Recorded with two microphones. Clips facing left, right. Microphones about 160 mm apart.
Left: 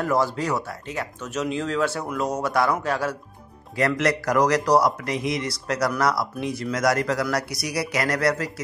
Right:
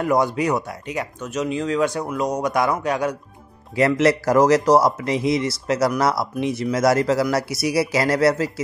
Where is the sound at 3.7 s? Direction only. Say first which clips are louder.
Right 5 dB; 25° right (ahead or behind).